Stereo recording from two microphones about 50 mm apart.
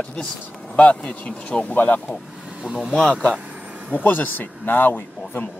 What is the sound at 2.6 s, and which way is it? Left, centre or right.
Speech, centre.